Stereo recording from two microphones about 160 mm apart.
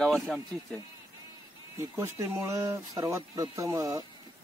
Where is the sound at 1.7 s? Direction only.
15° right (ahead or behind).